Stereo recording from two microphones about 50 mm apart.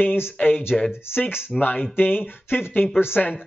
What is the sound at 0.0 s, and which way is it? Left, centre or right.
Speech, left.